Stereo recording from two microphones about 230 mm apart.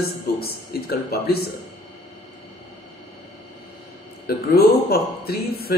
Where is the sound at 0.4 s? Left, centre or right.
Left.